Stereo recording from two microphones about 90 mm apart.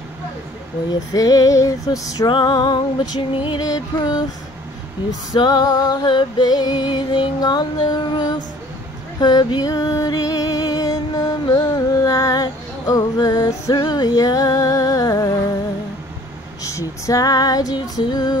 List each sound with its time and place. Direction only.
1.1 s female singing: 40° left (ahead or behind)
2.2 s music: 55° left (ahead or behind)
3.6 s music: 45° left (ahead or behind)
5.3 s music: 50° left (ahead or behind)
16.6 s music: 35° left (ahead or behind)